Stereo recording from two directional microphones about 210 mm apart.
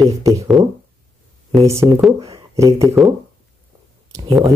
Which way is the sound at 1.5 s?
15° right (ahead or behind).